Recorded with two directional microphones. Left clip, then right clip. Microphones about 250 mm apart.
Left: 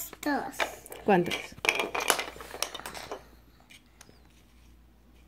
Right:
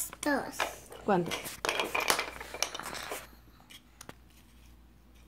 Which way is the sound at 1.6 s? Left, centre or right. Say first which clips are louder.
Left 3 dB; centre.